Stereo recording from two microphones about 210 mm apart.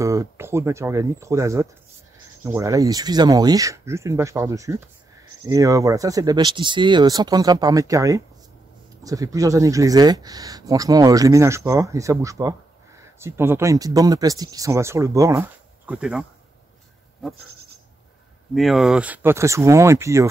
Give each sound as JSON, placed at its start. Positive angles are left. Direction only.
{"t": 0.0, "sound": "speech", "side_deg": -15}
{"t": 15.9, "sound": "speech", "side_deg": -5}
{"t": 18.5, "sound": "speech", "side_deg": 0}